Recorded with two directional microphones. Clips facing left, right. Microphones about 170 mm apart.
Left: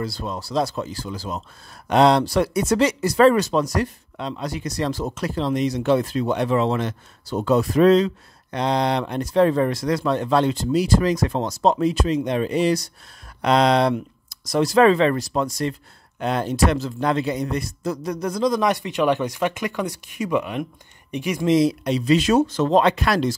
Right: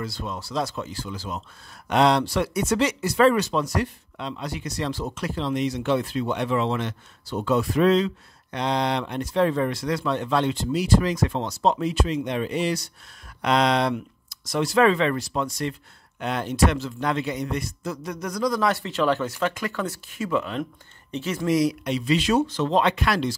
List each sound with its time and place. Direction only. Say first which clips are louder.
0.0 s a man's voice: left 4 dB; 35° left (ahead or behind); by 21.5 s 15° left (ahead or behind)
21.5 s speech: left 4 dB; 30° left (ahead or behind)